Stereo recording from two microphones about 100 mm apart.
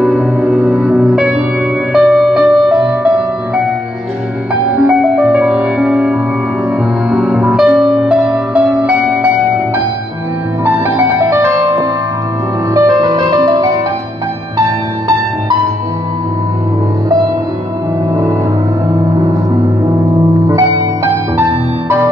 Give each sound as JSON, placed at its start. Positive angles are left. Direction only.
{"t": 0.0, "sound": "music", "side_deg": -15}
{"t": 4.7, "sound": "music", "side_deg": -10}
{"t": 10.6, "sound": "music", "side_deg": -25}
{"t": 20.4, "sound": "music", "side_deg": -30}